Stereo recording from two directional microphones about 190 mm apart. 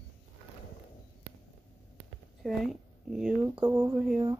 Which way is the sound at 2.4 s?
Centre (ahead or behind).